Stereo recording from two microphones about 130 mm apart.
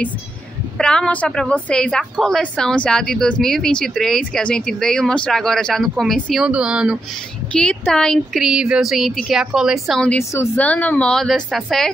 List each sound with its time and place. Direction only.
0.7 s a woman's voice: 5° left (ahead or behind)
7.5 s a woman's voice: 5° left (ahead or behind)
10.3 s speech: 20° left (ahead or behind)
10.6 s a woman's voice: 10° left (ahead or behind)